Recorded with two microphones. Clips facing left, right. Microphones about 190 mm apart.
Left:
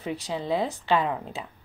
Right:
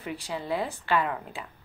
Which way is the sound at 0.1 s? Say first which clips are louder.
Left 3 dB; 20° left (ahead or behind).